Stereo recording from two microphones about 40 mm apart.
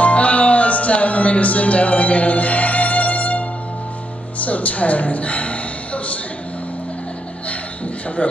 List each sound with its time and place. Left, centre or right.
0.0 s music: left
4.4 s speech: left
8.2 s a man's voice: left